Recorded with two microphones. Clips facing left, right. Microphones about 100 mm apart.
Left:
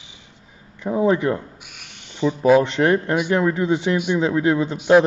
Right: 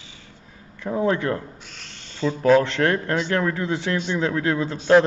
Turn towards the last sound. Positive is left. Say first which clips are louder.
# left 2 dB
turn(degrees=15)  # may be behind; listen again after turning